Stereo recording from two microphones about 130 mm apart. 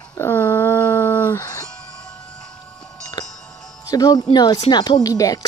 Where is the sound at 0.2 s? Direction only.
15° left (ahead or behind).